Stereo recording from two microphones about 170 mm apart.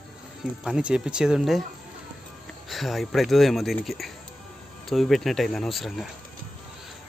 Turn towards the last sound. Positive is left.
turn(degrees=0)  # may be behind; listen again after turning